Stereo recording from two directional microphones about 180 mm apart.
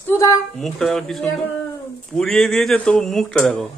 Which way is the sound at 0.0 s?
15° left (ahead or behind).